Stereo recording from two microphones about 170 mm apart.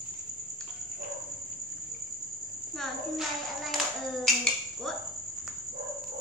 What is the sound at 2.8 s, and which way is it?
Music, centre (ahead or behind).